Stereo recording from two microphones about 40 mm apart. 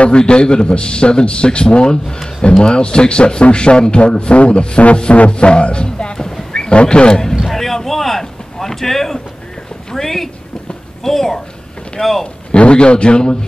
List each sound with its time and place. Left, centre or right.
0.0 s a man's voice: left
7.4 s a woman's voice: centre
12.5 s a man's voice: left